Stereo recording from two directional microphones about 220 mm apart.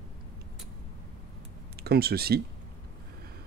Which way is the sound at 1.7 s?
45° right (ahead or behind).